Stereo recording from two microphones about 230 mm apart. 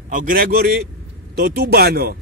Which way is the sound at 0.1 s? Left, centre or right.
Right.